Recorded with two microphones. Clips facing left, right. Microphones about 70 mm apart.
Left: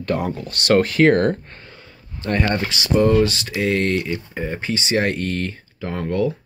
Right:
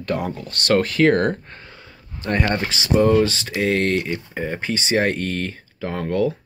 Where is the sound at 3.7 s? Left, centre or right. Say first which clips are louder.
Even; right.